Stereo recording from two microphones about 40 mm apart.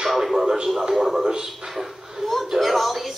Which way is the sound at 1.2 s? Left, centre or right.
Centre.